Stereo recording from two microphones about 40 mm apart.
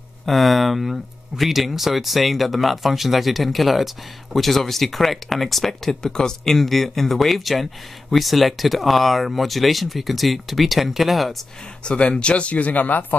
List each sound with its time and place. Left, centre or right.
0.2 s speech: centre
11.8 s speech: left